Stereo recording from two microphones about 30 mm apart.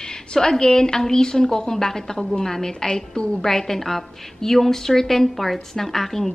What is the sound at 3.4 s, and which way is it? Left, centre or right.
A woman's voice, centre.